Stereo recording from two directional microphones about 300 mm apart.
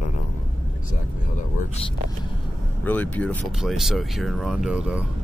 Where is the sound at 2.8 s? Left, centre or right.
Centre.